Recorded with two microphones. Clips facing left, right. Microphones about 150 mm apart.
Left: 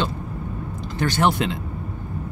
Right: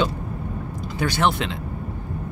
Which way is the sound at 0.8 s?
10° right (ahead or behind).